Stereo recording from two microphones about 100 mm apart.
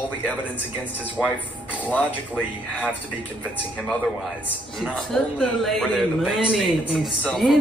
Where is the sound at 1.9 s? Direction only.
15° left (ahead or behind).